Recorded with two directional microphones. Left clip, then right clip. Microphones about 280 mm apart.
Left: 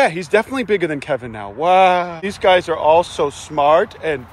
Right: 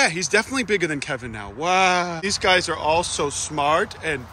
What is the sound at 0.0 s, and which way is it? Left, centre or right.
Speech, centre.